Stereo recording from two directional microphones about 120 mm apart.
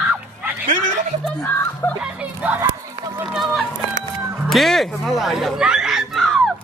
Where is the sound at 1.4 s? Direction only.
15° left (ahead or behind).